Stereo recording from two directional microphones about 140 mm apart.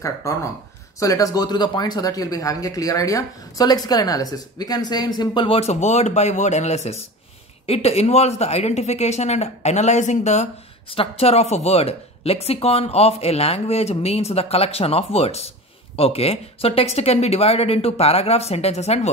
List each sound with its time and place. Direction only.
0.0 s a woman's voice: 20° left (ahead or behind); by 18.9 s 50° left (ahead or behind)